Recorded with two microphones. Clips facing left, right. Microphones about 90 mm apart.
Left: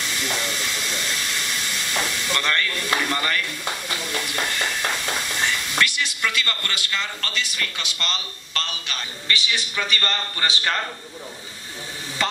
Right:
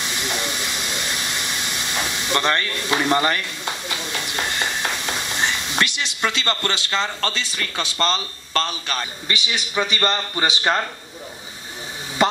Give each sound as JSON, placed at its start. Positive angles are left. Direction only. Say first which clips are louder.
{"t": 0.0, "sound": "vehicle", "louder": "right 1 dB", "side_deg": -20}
{"t": 9.3, "sound": "a man's voice", "louder": "even", "side_deg": -20}
{"t": 12.2, "sound": "a sound", "louder": "right 7 dB", "side_deg": -20}